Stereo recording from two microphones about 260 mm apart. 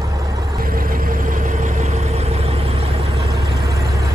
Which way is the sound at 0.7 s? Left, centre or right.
Right.